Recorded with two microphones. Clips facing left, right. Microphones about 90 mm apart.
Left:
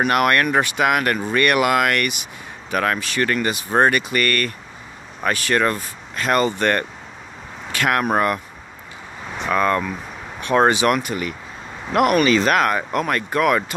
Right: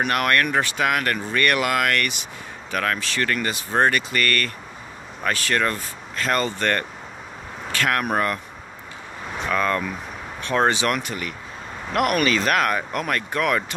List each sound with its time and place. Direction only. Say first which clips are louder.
0.1 s speech: left 3 dB; 20° left (ahead or behind)
9.5 s speech: left 4 dB; 10° left (ahead or behind)